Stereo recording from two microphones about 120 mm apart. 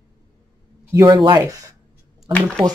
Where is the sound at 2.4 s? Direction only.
10° left (ahead or behind).